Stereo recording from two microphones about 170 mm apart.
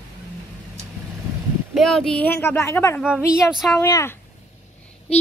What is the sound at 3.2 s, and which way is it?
Speech, centre (ahead or behind).